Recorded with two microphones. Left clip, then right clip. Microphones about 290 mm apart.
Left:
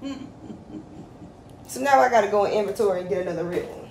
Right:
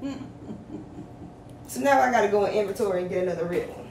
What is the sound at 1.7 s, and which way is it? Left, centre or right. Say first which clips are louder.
Speech: left 3 dB; centre.